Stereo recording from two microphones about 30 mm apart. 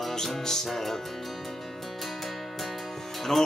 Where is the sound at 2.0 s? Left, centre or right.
Centre.